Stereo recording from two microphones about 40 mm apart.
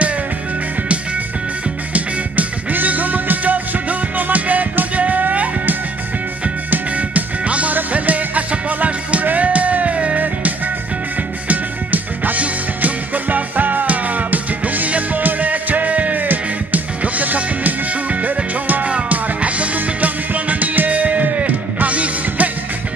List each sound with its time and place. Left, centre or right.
2.0 s music: right
11.4 s music: right